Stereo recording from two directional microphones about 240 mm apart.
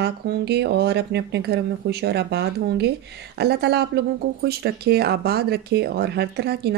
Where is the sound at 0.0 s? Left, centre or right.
Right.